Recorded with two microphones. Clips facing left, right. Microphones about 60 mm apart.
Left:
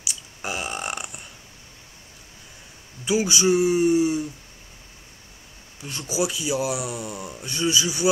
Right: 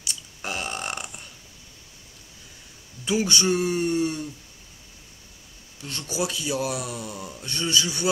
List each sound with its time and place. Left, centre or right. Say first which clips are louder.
0.0 s burping: left 2 dB; centre
3.1 s speech: left 3 dB; centre
5.8 s speech: left 3 dB; centre